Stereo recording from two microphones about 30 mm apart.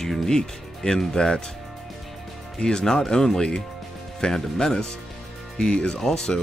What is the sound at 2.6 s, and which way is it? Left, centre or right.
Speech, left.